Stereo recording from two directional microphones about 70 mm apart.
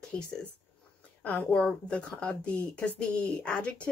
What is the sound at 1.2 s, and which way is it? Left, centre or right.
Speech, left.